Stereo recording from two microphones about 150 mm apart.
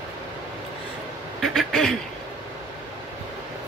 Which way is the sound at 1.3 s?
Centre (ahead or behind).